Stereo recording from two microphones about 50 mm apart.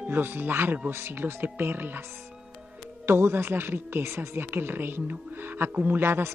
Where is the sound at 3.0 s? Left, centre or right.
Right.